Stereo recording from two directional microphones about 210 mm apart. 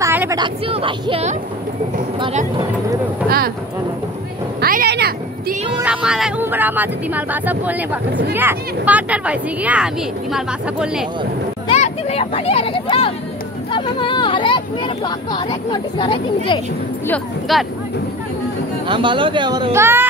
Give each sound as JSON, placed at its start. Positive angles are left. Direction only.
{"t": 0.0, "sound": "vehicle", "side_deg": -10}
{"t": 0.4, "sound": "speech", "side_deg": -25}
{"t": 3.3, "sound": "speech", "side_deg": -45}
{"t": 4.6, "sound": "a sound", "side_deg": -45}
{"t": 5.8, "sound": "speech", "side_deg": -5}
{"t": 11.6, "sound": "speech", "side_deg": 30}
{"t": 17.1, "sound": "speech", "side_deg": 0}
{"t": 18.9, "sound": "speech", "side_deg": -25}